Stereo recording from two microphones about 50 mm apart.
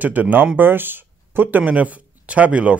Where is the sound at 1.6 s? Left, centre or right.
Right.